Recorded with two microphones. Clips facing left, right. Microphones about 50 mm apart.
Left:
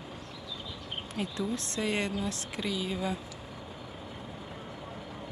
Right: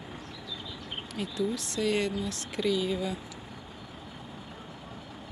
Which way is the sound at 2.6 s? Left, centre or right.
Centre.